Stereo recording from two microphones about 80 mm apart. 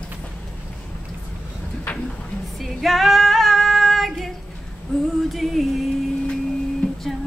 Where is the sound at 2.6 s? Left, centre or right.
Centre.